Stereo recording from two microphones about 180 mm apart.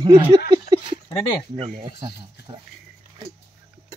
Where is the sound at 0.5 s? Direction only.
25° right (ahead or behind).